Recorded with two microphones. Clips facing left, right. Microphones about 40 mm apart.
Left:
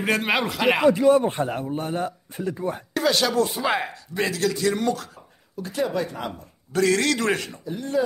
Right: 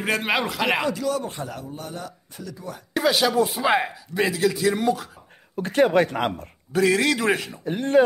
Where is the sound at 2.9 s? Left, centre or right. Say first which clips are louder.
Right 2 dB; centre.